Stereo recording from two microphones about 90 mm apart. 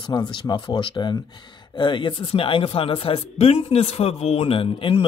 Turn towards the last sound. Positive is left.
turn(degrees=90)